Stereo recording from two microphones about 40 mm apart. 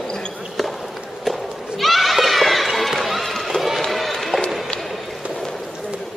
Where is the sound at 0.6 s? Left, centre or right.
Centre.